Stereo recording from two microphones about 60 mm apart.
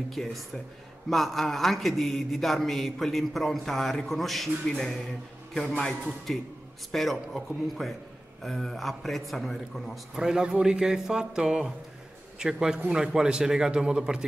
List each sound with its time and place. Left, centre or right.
0.1 s speech: centre
10.1 s speech: centre